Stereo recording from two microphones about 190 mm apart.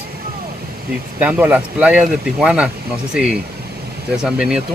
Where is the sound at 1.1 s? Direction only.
10° right (ahead or behind).